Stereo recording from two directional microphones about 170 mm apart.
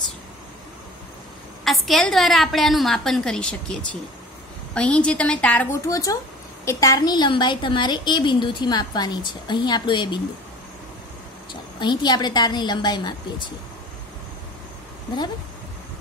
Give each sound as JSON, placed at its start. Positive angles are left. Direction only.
{"t": 1.6, "sound": "a woman's voice", "side_deg": 0}
{"t": 5.9, "sound": "a woman's voice", "side_deg": 20}
{"t": 11.8, "sound": "a woman's voice", "side_deg": 25}